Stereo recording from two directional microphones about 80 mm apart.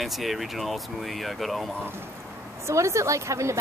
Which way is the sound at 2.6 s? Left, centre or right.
Right.